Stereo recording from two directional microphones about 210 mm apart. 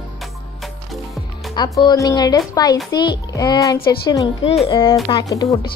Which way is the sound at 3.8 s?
45° left (ahead or behind).